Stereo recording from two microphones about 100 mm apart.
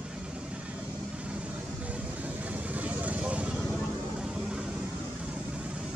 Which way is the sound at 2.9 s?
15° right (ahead or behind).